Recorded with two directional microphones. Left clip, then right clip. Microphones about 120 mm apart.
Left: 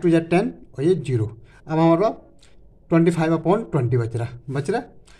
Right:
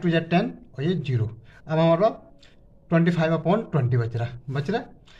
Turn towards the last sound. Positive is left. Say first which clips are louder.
# left 4 dB
turn(degrees=35)  # may be behind; listen again after turning